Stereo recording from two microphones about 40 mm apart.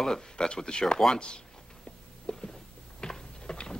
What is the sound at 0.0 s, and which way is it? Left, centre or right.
Speech, centre.